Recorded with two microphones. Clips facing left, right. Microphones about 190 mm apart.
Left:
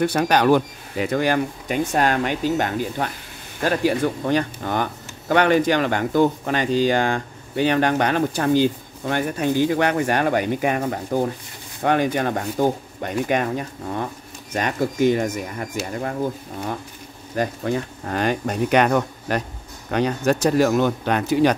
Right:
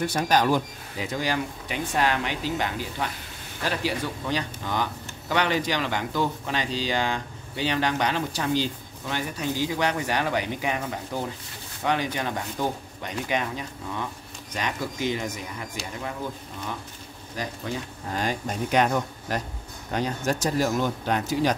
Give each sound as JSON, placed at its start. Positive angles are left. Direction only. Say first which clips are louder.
{"t": 0.0, "sound": "speech", "louder": "left 5 dB", "side_deg": 65}